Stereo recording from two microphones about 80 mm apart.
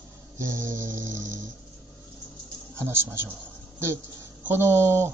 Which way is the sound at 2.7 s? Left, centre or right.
Right.